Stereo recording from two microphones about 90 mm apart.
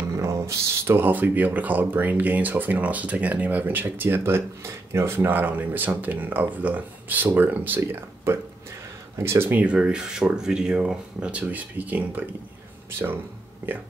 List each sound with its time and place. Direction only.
0.2 s speech: 35° right (ahead or behind); by 12.3 s 20° right (ahead or behind)
13.6 s speech: 20° right (ahead or behind)